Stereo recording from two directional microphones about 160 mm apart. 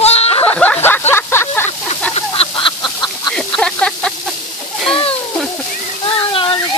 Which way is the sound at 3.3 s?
5° left (ahead or behind).